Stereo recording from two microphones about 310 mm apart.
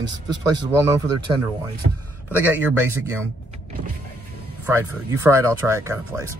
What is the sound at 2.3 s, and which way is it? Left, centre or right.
Speech, centre.